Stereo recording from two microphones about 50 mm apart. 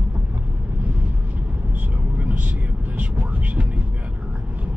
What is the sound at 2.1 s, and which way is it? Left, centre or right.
Vehicle, right.